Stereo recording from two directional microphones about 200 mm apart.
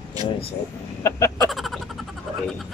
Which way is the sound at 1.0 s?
15° left (ahead or behind).